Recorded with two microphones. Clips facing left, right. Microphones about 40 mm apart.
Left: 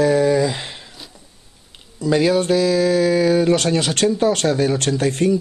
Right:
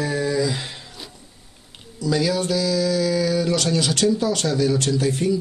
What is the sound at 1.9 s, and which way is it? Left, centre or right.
Speech, left.